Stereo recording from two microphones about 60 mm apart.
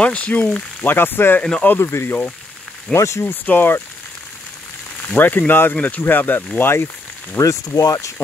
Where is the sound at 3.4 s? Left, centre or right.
Left.